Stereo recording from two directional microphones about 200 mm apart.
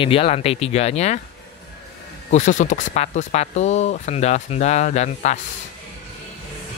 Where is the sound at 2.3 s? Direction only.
40° left (ahead or behind).